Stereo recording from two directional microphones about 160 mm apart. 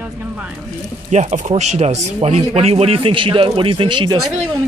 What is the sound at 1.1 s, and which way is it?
A man's voice, 50° right (ahead or behind).